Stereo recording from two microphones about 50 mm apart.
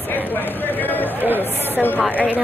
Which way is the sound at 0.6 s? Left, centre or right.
Left.